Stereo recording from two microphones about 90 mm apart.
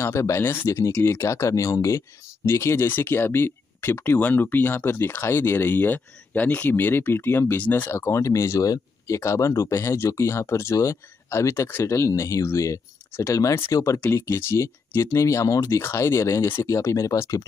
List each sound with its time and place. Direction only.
0.0 s speech: 30° left (ahead or behind)